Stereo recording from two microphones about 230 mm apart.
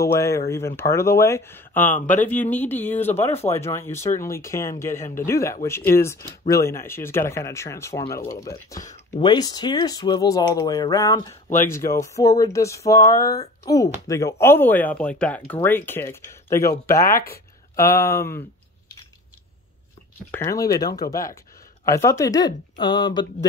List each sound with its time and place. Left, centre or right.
0.0 s speech: centre
17.1 s speech: left
17.7 s speech: centre
20.3 s speech: centre